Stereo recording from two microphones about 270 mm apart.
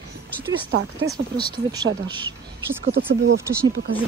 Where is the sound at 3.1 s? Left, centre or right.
Right.